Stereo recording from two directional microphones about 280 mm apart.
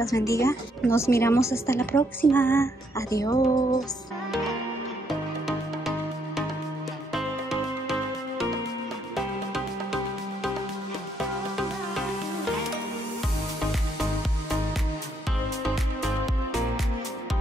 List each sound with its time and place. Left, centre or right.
0.0 s a woman's voice: centre
11.1 s music: centre